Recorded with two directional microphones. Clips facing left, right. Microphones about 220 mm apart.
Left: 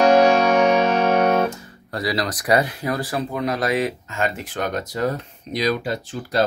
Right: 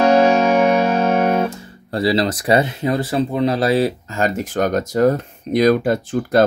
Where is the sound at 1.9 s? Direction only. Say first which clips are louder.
Right 7 dB; 30° right (ahead or behind).